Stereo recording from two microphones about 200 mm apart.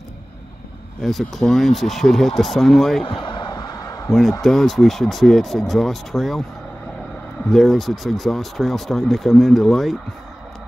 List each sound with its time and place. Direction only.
1.0 s speech: centre (ahead or behind)
3.0 s a sound: 25° left (ahead or behind)
4.1 s speech: centre (ahead or behind)
7.4 s speech: centre (ahead or behind)